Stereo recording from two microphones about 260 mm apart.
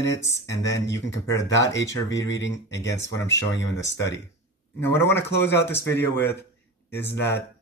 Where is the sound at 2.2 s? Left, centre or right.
Left.